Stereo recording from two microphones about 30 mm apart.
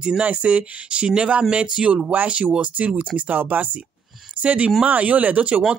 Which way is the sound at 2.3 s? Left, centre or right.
Right.